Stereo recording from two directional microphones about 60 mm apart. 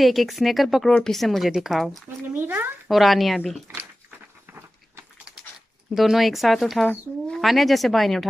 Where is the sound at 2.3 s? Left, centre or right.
Right.